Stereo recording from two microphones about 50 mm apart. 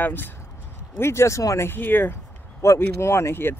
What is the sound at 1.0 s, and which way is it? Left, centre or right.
Speech, left.